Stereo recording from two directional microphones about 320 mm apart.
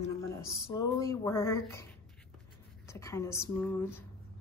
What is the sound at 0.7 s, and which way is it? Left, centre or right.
A woman's voice, centre.